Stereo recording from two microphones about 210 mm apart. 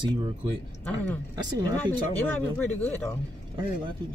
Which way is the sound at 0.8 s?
5° left (ahead or behind).